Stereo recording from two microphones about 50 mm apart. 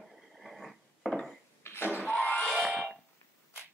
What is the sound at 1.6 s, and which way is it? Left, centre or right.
Cough, left.